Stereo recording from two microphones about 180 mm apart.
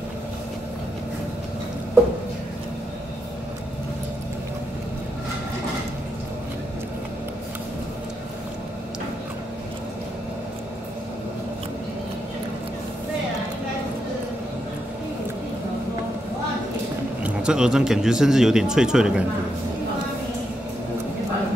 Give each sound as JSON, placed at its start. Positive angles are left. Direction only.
{"t": 17.2, "sound": "speech", "side_deg": -5}